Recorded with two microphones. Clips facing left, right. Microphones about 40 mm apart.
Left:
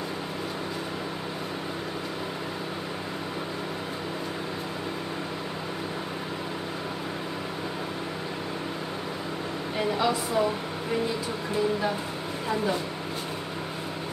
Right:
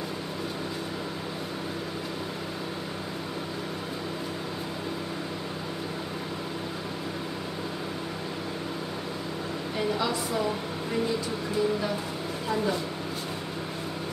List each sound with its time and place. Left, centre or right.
9.9 s speech: centre